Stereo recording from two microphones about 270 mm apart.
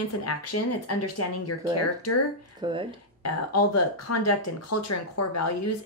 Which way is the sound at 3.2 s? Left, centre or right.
Left.